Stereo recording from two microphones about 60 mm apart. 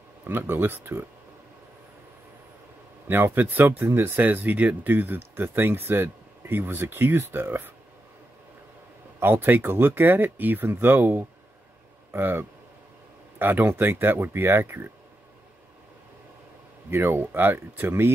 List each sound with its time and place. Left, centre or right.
0.2 s speech: right
3.1 s speech: right
9.2 s speech: right
16.9 s speech: right